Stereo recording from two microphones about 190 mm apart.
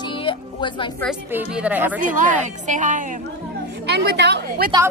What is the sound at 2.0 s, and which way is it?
A woman's voice, 45° right (ahead or behind).